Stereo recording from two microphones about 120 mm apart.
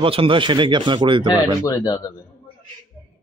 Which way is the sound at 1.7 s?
35° left (ahead or behind).